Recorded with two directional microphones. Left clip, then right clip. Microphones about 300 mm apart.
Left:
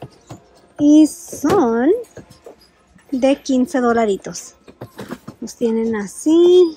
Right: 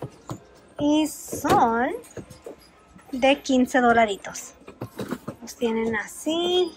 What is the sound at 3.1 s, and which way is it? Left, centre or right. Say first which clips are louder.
A woman's voice: left 4 dB; centre.